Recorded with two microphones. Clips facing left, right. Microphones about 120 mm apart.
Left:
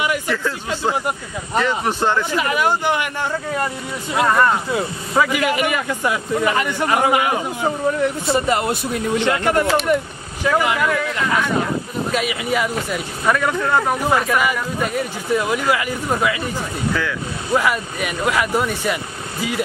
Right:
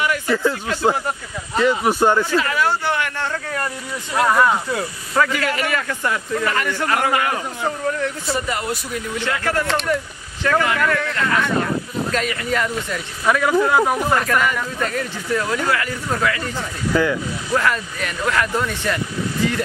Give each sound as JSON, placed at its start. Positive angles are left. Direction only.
{"t": 0.3, "sound": "speech", "side_deg": -15}
{"t": 1.6, "sound": "speech", "side_deg": -10}
{"t": 2.3, "sound": "a man's voice", "side_deg": 15}
{"t": 4.1, "sound": "speech", "side_deg": 0}
{"t": 5.1, "sound": "a man's voice", "side_deg": 15}
{"t": 8.3, "sound": "a man's voice", "side_deg": 25}
{"t": 14.0, "sound": "a man's voice", "side_deg": 5}
{"t": 16.9, "sound": "speech", "side_deg": -20}
{"t": 17.6, "sound": "a man's voice", "side_deg": 10}